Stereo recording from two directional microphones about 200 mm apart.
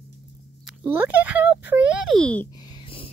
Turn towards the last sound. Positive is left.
turn(degrees=25)  # may be behind; listen again after turning